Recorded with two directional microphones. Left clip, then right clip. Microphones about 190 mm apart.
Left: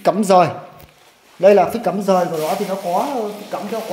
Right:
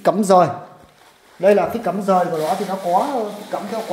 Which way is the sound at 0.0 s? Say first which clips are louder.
Left 1 dB; 5° left (ahead or behind).